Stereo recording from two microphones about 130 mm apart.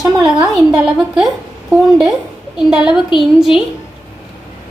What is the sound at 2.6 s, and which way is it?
Speech, 5° right (ahead or behind).